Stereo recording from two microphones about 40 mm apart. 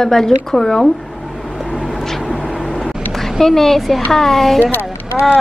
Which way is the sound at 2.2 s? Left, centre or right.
Left.